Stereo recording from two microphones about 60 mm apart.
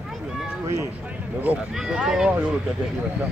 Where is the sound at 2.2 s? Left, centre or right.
Right.